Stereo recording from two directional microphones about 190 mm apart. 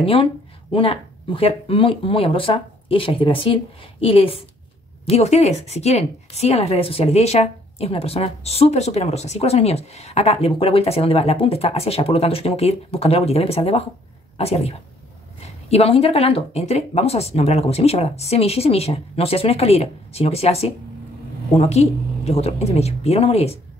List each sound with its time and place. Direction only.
0.0 s a woman's voice: 30° left (ahead or behind)